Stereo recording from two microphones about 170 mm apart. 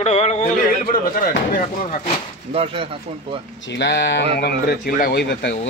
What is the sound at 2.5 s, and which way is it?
Speech, 35° right (ahead or behind).